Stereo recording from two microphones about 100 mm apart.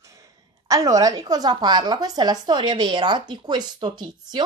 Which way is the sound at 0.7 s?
35° right (ahead or behind).